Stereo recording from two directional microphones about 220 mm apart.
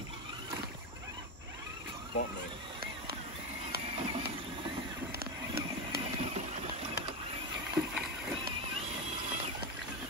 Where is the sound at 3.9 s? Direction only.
25° right (ahead or behind).